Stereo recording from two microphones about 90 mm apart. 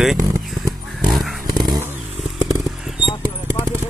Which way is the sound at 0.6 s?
Centre (ahead or behind).